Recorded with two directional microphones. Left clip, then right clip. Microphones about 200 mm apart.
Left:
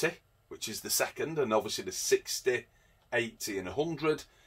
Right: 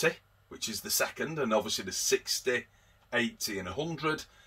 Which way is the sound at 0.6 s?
35° left (ahead or behind).